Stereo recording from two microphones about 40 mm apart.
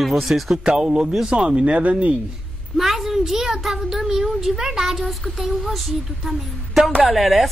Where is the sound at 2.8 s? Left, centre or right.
Centre.